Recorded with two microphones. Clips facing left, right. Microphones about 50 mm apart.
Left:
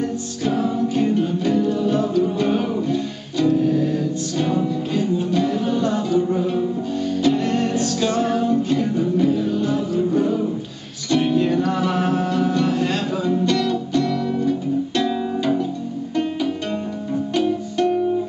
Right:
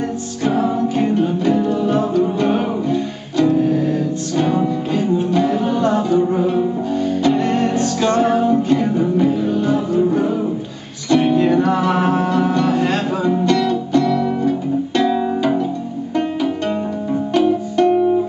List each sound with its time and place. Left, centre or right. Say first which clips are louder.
0.4 s music: right 4 dB; centre
17.3 s music: right 6 dB; centre